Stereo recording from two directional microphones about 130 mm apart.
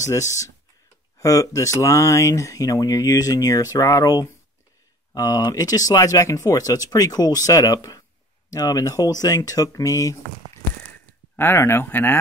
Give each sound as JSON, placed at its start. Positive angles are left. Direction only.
{"t": 0.0, "sound": "speech", "side_deg": 25}
{"t": 11.3, "sound": "speech", "side_deg": 20}